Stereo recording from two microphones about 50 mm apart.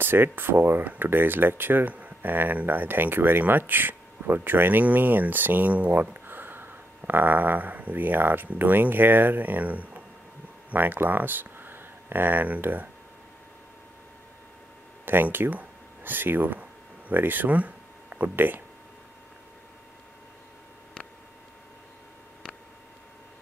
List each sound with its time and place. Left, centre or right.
0.0 s speech: right
1.9 s speech: right
6.2 s a sound: right
8.5 s speech: right
15.1 s speech: right
18.3 s speech: right